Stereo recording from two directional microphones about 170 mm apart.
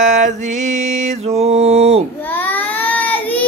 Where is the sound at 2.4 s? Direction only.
10° left (ahead or behind).